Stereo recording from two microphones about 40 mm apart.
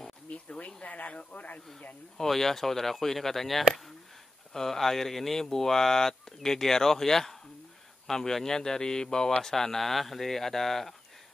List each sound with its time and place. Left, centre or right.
0.3 s a sound: left
0.8 s speech: left
2.1 s speech: centre